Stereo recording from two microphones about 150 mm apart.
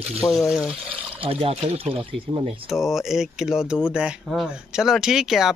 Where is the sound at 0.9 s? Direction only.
40° right (ahead or behind).